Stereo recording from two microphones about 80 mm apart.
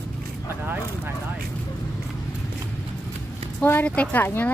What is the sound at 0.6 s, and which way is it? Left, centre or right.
Speech, right.